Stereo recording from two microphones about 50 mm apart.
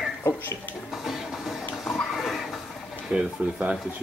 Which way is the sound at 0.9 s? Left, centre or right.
Centre.